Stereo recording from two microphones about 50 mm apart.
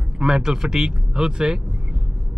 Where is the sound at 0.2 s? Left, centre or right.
Centre.